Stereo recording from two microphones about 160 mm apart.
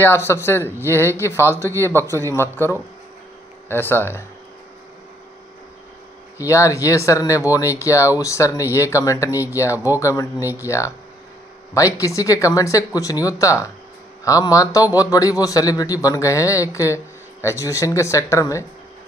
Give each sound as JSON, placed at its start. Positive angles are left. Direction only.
{"t": 0.0, "sound": "speech", "side_deg": 15}
{"t": 6.4, "sound": "a man's voice", "side_deg": 20}
{"t": 10.3, "sound": "speech", "side_deg": -10}
{"t": 11.7, "sound": "a man's voice", "side_deg": 20}